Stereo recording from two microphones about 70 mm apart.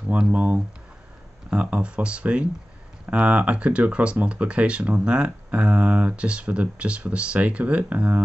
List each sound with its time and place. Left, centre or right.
0.1 s speech: right